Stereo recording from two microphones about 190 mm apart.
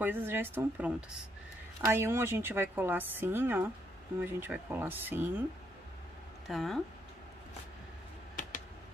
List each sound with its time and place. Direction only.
0.0 s a woman's voice: 10° right (ahead or behind)
6.4 s speech: centre (ahead or behind)